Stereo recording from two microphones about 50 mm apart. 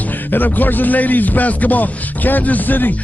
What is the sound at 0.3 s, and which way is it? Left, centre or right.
Speech, left.